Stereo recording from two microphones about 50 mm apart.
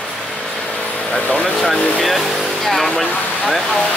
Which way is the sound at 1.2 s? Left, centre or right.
Left.